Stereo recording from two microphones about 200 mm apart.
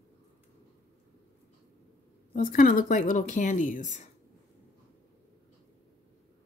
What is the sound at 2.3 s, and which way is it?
Speech, 45° left (ahead or behind).